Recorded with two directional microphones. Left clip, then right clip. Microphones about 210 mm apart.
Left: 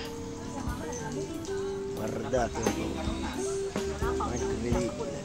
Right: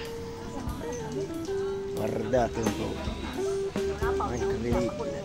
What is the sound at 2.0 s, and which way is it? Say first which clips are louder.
Music: right 4 dB; 35° right (ahead or behind).